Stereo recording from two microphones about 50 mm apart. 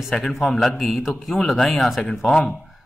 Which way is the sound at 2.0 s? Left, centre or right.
Centre.